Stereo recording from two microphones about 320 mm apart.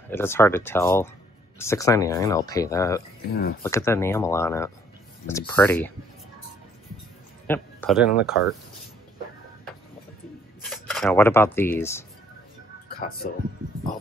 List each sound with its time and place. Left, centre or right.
0.1 s speech: centre
3.3 s speech: left
3.6 s speech: centre
7.4 s speech: centre
10.6 s speech: centre
13.0 s speech: left